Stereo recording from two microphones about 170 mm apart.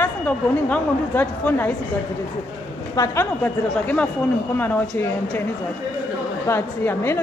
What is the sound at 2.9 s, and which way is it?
Speech, 15° left (ahead or behind).